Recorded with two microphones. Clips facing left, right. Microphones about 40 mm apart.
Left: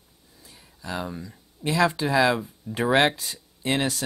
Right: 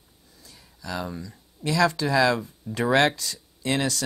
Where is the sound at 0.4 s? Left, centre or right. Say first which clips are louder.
Even; left.